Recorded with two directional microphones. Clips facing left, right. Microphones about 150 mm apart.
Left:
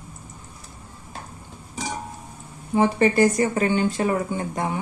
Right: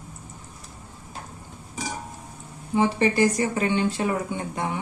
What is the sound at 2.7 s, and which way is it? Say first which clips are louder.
Speech: left 3 dB; 50° left (ahead or behind).